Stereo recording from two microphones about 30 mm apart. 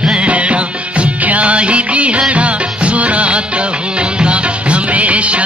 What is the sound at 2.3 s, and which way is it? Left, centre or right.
Music, right.